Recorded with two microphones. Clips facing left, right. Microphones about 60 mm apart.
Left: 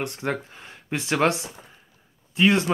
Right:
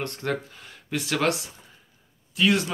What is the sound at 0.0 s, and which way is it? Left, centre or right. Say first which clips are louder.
Speech: left 1 dB; centre.